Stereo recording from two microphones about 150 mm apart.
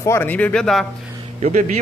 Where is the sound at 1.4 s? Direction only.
55° right (ahead or behind).